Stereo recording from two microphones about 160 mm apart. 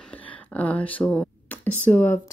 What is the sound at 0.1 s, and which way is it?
Speech, 10° left (ahead or behind).